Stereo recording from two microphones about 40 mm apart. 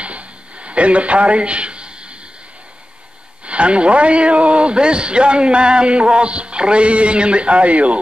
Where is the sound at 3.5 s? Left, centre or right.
Right.